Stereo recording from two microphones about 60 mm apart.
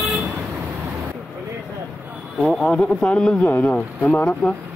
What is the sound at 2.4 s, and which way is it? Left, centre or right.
Speech, centre.